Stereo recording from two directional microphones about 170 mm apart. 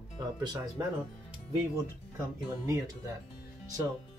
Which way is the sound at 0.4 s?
25° right (ahead or behind).